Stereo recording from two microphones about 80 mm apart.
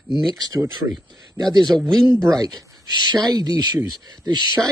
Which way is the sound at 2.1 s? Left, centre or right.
Right.